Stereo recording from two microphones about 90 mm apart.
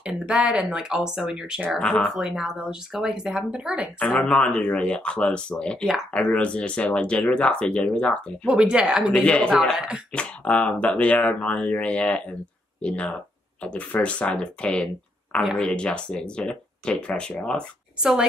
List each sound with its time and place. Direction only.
0.0 s speech: 10° right (ahead or behind)
1.8 s speech: 5° left (ahead or behind)
2.1 s speech: 5° right (ahead or behind)
4.0 s speech: 10° left (ahead or behind)
8.5 s speech: 10° right (ahead or behind)
9.1 s speech: 10° left (ahead or behind)
9.6 s speech: centre (ahead or behind)
10.1 s speech: 15° left (ahead or behind)